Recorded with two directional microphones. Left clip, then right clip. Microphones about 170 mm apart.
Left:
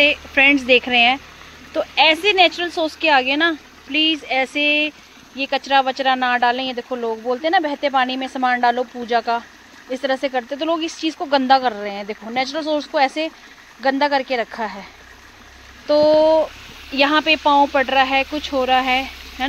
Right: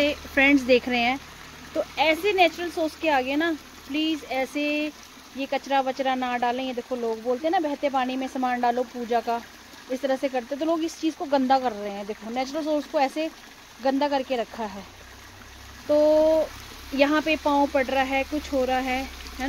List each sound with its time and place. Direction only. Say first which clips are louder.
0.0 s speech: left 7 dB; 15° right (ahead or behind)
15.9 s speech: left 6 dB; 5° right (ahead or behind)